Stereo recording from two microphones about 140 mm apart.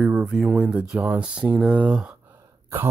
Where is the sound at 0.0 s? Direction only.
5° right (ahead or behind).